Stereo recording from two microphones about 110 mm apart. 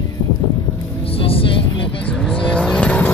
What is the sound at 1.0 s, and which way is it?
Vehicle, 60° left (ahead or behind).